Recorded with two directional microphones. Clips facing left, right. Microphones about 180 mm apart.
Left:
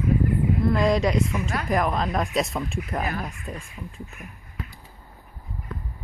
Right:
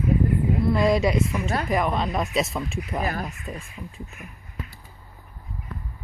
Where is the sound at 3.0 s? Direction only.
40° right (ahead or behind).